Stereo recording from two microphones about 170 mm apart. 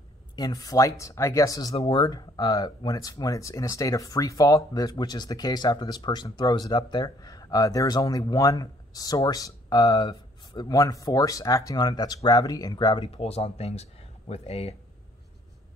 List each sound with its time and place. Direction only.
0.4 s speech: 20° left (ahead or behind)